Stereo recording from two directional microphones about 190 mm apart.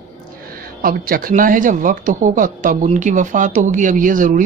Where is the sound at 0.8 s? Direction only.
50° right (ahead or behind).